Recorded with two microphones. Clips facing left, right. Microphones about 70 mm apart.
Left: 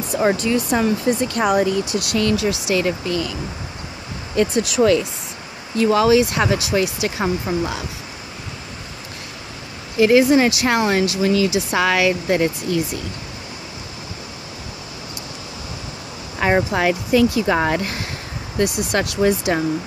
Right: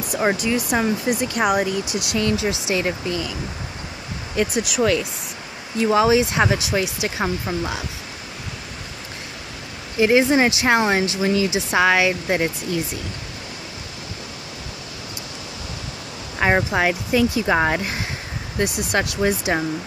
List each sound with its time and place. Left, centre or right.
0.4 s speech: centre
4.4 s speech: centre
5.8 s speech: centre
7.4 s speech: centre
9.9 s speech: centre
16.5 s speech: centre